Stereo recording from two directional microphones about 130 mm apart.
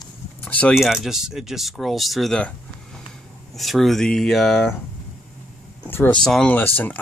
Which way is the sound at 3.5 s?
Centre (ahead or behind).